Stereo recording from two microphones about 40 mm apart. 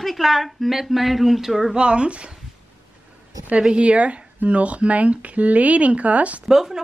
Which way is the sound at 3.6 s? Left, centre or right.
Right.